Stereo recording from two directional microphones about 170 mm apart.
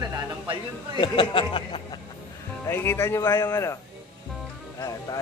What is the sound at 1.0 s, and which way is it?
Speech, 30° left (ahead or behind).